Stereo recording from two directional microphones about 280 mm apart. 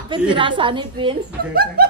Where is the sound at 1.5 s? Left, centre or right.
Right.